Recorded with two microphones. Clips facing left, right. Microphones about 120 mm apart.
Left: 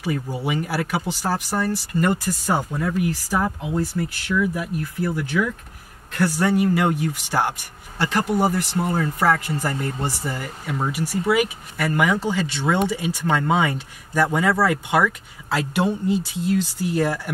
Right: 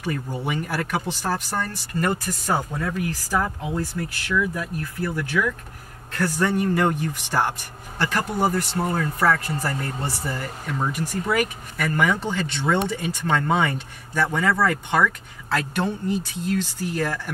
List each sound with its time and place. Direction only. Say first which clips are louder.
0.0 s speech: left 2 dB; 5° left (ahead or behind)